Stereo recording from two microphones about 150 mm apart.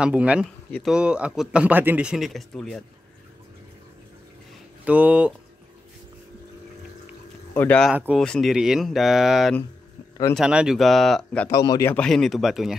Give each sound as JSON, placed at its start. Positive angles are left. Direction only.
{"t": 0.0, "sound": "speech", "side_deg": -10}
{"t": 4.8, "sound": "speech", "side_deg": -10}
{"t": 7.5, "sound": "speech", "side_deg": 15}
{"t": 8.2, "sound": "speech", "side_deg": 0}
{"t": 11.4, "sound": "speech", "side_deg": 25}
{"t": 11.8, "sound": "speech", "side_deg": 10}